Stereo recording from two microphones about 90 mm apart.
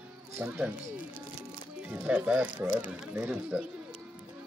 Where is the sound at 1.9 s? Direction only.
15° right (ahead or behind).